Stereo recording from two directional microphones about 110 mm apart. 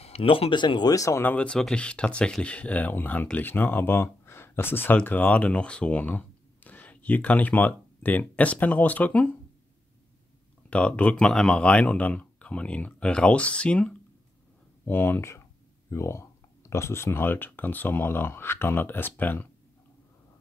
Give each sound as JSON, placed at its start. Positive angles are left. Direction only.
{"t": 0.0, "sound": "speech", "side_deg": 65}
{"t": 1.2, "sound": "speech", "side_deg": 10}
{"t": 10.7, "sound": "speech", "side_deg": 10}
{"t": 14.9, "sound": "speech", "side_deg": 20}